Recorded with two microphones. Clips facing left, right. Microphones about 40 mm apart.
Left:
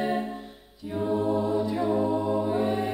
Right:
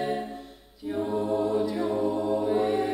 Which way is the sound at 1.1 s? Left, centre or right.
Centre.